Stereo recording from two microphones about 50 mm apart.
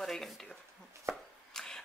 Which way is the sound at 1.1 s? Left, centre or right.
Right.